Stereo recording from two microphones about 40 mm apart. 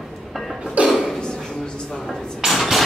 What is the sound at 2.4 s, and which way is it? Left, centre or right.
Dishes, centre.